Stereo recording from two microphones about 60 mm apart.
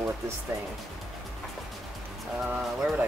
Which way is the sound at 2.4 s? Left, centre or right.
Centre.